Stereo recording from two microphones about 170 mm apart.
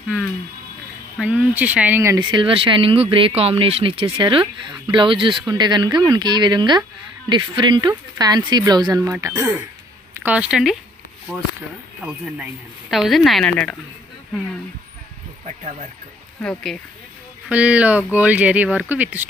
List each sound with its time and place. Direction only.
1.2 s speech: 10° right (ahead or behind)
2.1 s speech: 30° right (ahead or behind)
10.2 s speech: 5° right (ahead or behind)
12.0 s speech: 5° right (ahead or behind)
17.5 s speech: 5° right (ahead or behind)